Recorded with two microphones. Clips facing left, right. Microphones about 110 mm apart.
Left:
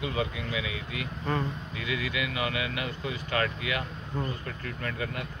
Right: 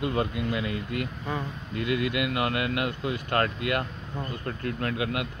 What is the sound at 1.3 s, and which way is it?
Speech, 10° right (ahead or behind).